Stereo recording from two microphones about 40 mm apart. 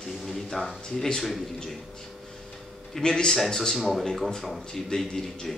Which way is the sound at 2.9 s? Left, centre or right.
Centre.